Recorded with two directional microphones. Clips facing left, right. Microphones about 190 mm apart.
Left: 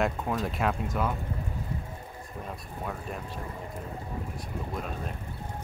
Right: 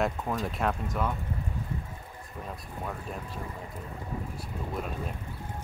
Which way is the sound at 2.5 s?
Centre (ahead or behind).